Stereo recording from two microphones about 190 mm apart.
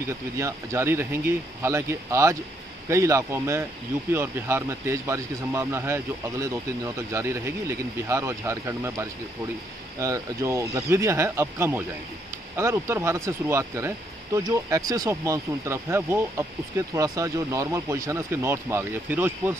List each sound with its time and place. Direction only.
0.4 s speech: 15° right (ahead or behind)